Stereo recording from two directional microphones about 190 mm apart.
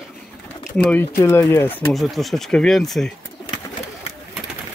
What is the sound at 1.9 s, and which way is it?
Speech, centre (ahead or behind).